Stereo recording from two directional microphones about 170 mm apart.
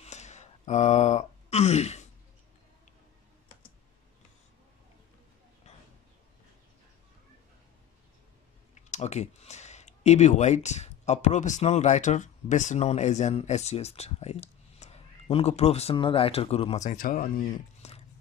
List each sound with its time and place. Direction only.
0.0 s a sound: 40° left (ahead or behind)
8.7 s speech: 40° left (ahead or behind)
17.8 s dog: 40° left (ahead or behind)